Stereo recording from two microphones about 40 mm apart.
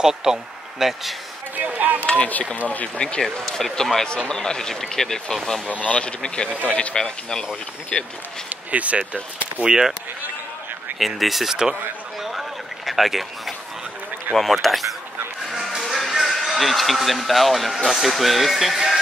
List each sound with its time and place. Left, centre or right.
0.0 s speech: centre
1.6 s a sound: right
2.0 s a man's voice: left
3.2 s speech: centre
5.7 s a man's voice: left
5.9 s a man's voice: left
7.0 s speech: centre
7.9 s speech: left
8.5 s speech: right
9.7 s speech: centre
11.0 s speech: centre
12.2 s a sound: centre
14.3 s speech: centre